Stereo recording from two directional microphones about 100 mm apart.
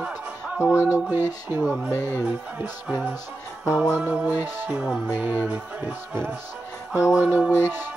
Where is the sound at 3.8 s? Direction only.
10° right (ahead or behind).